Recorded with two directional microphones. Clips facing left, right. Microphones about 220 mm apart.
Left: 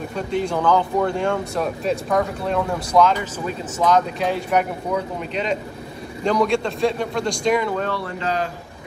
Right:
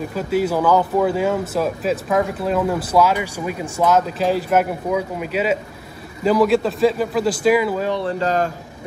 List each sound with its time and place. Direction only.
0.1 s speech: 5° right (ahead or behind)
7.9 s speech: 30° right (ahead or behind)
8.2 s speech: 45° right (ahead or behind)